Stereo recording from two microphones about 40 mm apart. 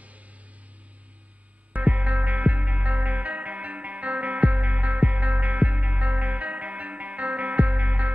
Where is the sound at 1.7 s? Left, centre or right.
Right.